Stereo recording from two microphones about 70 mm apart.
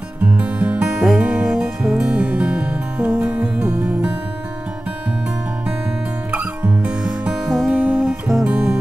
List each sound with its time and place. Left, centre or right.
0.2 s music: centre
6.3 s music: right
6.9 s music: centre
7.8 s music: centre
8.1 s music: centre
8.5 s music: centre